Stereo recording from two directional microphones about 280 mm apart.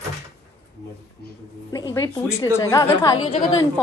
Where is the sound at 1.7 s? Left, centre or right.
Centre.